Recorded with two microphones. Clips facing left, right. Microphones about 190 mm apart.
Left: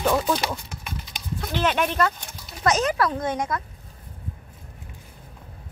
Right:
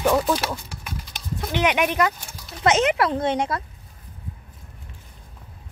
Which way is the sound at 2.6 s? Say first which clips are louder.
Right 2 dB; 25° right (ahead or behind).